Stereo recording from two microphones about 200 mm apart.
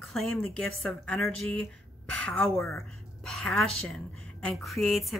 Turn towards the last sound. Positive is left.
turn(degrees=0)  # may be behind; listen again after turning